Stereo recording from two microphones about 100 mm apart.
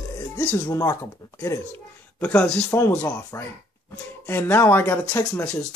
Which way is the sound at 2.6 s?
25° left (ahead or behind).